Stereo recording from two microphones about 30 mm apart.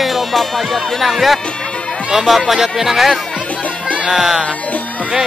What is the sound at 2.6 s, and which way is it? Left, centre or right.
Speech, centre.